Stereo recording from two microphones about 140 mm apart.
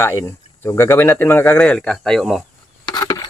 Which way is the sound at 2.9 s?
25° left (ahead or behind).